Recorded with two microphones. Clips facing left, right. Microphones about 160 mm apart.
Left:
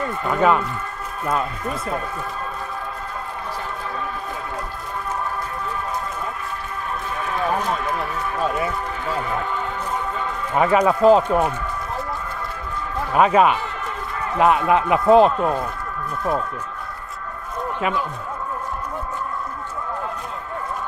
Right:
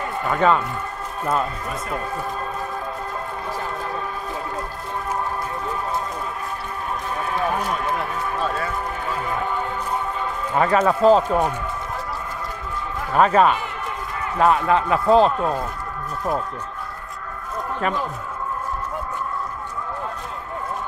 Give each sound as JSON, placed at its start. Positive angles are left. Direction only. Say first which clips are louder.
{"t": 0.3, "sound": "a man's voice", "louder": "left 1 dB", "side_deg": 10}
{"t": 8.4, "sound": "run", "louder": "left 4 dB", "side_deg": 20}
{"t": 10.5, "sound": "a man's voice", "louder": "left 1 dB", "side_deg": 10}
{"t": 13.1, "sound": "a man's voice", "louder": "even", "side_deg": 5}